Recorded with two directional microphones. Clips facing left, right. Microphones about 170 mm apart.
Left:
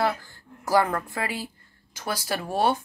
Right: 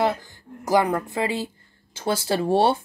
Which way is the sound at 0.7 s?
20° right (ahead or behind).